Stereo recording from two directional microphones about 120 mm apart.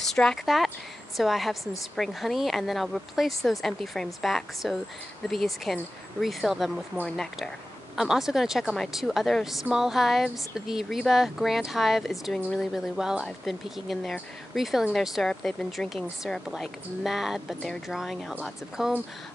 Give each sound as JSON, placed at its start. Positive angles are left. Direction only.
{"t": 0.0, "sound": "a woman's voice", "side_deg": 5}
{"t": 7.9, "sound": "a woman's voice", "side_deg": -5}